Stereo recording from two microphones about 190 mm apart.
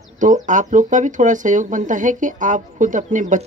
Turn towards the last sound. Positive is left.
turn(degrees=-40)  # may be behind; listen again after turning